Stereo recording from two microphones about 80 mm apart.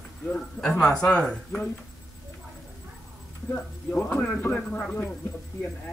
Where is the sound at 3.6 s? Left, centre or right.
Centre.